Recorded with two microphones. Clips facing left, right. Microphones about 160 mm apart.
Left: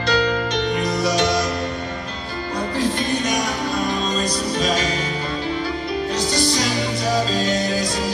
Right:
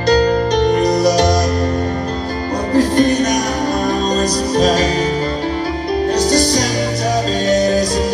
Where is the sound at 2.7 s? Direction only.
40° right (ahead or behind).